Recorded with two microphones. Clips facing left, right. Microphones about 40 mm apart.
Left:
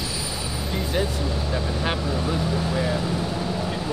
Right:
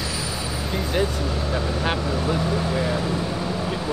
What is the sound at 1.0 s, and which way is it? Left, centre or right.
Speech, centre.